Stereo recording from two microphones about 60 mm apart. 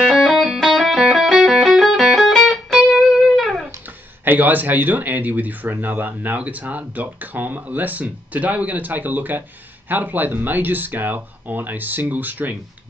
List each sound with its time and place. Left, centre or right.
0.3 s music: centre
4.2 s speech: right